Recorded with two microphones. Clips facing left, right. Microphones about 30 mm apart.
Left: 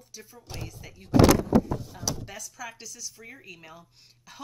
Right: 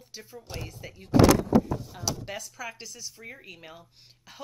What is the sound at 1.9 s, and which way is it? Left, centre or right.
Speech, right.